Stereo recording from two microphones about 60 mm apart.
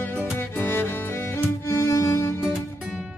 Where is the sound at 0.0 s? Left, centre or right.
Left.